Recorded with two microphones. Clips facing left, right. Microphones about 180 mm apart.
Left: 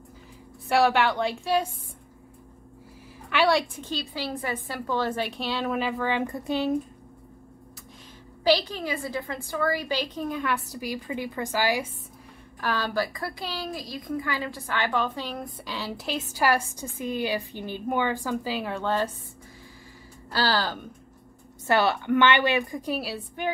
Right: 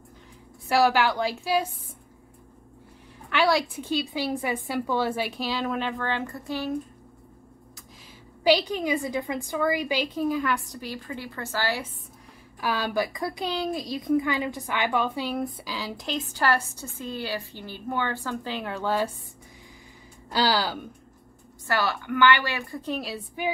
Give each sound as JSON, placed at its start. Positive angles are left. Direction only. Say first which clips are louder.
{"t": 0.7, "sound": "a woman's voice", "louder": "even", "side_deg": 0}
{"t": 3.3, "sound": "a woman's voice", "louder": "even", "side_deg": 0}
{"t": 3.7, "sound": "a woman's voice", "louder": "right 5 dB", "side_deg": -10}
{"t": 8.5, "sound": "a woman's voice", "louder": "right 2 dB", "side_deg": -15}
{"t": 12.5, "sound": "a woman's voice", "louder": "right 1 dB", "side_deg": -10}
{"t": 20.2, "sound": "a woman's voice", "louder": "right 1 dB", "side_deg": -15}
{"t": 21.6, "sound": "a woman's voice", "louder": "left 4 dB", "side_deg": 25}